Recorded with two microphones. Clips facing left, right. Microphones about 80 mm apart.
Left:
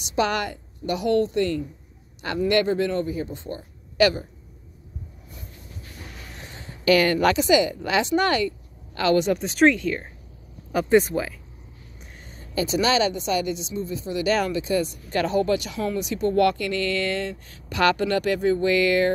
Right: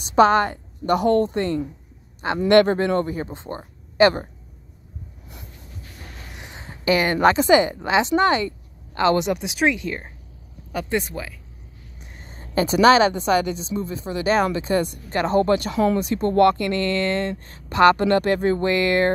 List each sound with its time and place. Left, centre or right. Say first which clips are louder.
0.0 s speech: right 8 dB; right
2.4 s speech: right 5 dB; right
3.3 s speech: right 1 dB; right
6.3 s a sound: right 1 dB; centre
6.7 s speech: left 1 dB; right
7.3 s speech: right 3 dB; right
9.3 s speech: left 3 dB; centre
9.8 s speech: left 2 dB; right
10.7 s speech: left 6 dB; centre
12.3 s a sound: right 4 dB; right
12.7 s speech: right 7 dB; right
15.0 s speech: right 4 dB; right